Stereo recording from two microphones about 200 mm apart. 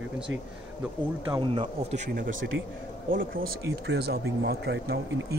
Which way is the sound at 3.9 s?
55° right (ahead or behind).